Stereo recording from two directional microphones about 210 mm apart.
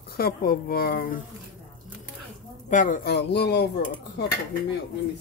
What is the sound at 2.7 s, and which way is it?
Speech, 40° left (ahead or behind).